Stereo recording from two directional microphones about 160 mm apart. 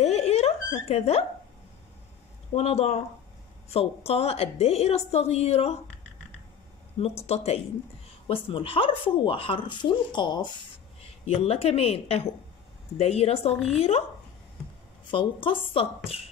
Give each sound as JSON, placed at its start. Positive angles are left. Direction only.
{"t": 0.0, "sound": "a sound", "side_deg": 40}
{"t": 2.5, "sound": "speech", "side_deg": 40}
{"t": 7.2, "sound": "speech", "side_deg": 40}
{"t": 11.2, "sound": "speech", "side_deg": 40}
{"t": 15.0, "sound": "speech", "side_deg": 30}